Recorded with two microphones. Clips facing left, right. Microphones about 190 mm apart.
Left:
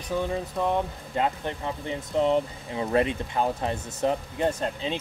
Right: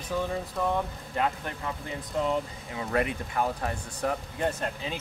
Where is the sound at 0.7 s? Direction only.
25° left (ahead or behind).